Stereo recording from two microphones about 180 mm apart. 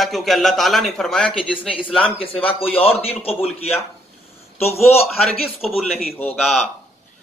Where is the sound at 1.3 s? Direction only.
30° left (ahead or behind).